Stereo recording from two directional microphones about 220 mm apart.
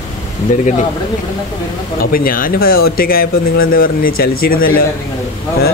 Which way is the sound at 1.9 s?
40° left (ahead or behind).